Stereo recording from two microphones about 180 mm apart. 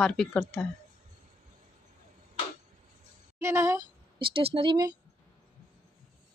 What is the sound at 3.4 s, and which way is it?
Speech, 15° right (ahead or behind).